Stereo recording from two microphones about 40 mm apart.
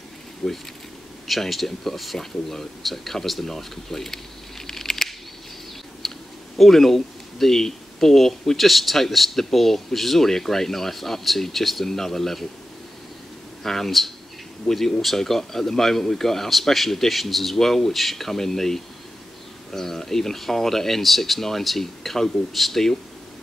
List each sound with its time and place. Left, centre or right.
0.4 s speech: centre
1.2 s speech: centre
6.0 s a sound: centre
6.6 s speech: centre
13.7 s speech: centre